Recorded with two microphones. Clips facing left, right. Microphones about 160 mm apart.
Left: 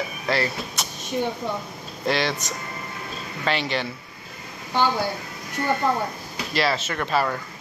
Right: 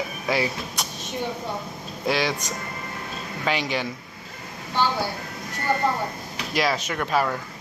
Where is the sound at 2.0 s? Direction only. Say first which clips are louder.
Even; 10° right (ahead or behind).